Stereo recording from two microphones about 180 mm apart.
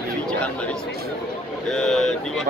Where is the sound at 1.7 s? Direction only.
Centre (ahead or behind).